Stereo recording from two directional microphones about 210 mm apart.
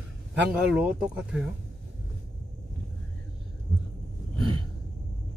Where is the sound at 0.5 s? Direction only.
5° right (ahead or behind).